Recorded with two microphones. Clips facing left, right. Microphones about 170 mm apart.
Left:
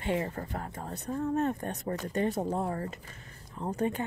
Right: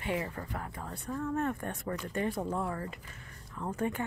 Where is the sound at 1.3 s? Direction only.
25° left (ahead or behind).